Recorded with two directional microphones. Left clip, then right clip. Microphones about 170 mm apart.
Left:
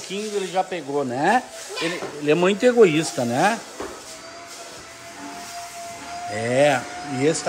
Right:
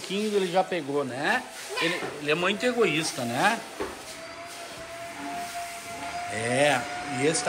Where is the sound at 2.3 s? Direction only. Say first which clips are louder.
Left 8 dB; 50° left (ahead or behind).